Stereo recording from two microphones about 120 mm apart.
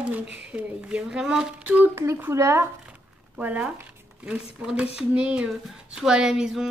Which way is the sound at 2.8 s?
15° right (ahead or behind).